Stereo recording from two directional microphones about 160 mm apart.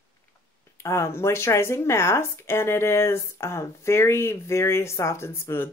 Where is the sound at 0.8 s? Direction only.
15° left (ahead or behind).